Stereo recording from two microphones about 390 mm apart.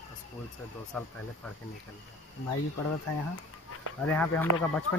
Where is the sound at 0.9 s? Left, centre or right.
Centre.